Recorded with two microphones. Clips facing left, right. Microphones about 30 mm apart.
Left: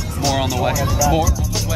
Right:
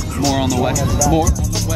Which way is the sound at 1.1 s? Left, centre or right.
Centre.